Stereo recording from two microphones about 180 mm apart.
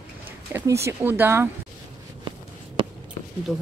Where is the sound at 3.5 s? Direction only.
Centre (ahead or behind).